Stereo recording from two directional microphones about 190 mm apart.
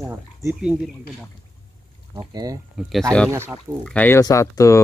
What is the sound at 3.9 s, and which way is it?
Speech, 10° left (ahead or behind).